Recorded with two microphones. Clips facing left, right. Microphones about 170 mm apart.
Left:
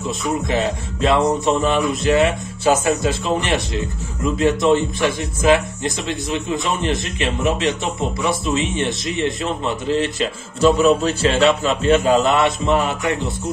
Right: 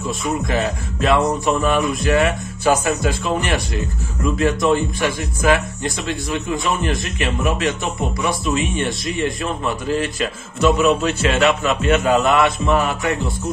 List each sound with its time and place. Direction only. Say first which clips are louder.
0.2 s speech: left 1 dB; 25° left (ahead or behind)